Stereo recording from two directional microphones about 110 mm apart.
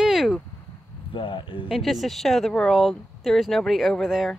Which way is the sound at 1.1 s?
50° left (ahead or behind).